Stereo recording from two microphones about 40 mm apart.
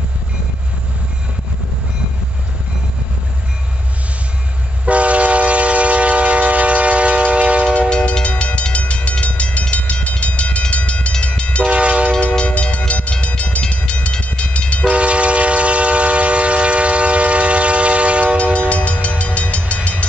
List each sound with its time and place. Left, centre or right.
4.8 s train: right
8.1 s train: left
11.6 s train: right
12.2 s train: left
14.9 s train: right
18.7 s train: left